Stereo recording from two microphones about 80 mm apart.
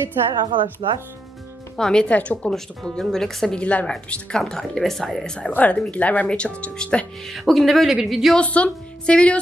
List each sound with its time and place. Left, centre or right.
0.3 s speech: right
1.8 s speech: centre
2.5 s speech: centre
3.5 s speech: centre
5.5 s speech: centre
7.2 s speech: centre
8.4 s speech: centre